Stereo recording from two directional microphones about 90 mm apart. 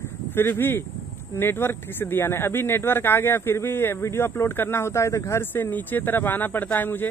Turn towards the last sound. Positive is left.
turn(degrees=20)  # may be behind; listen again after turning